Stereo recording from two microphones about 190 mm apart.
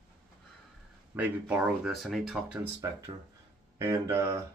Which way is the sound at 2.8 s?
15° right (ahead or behind).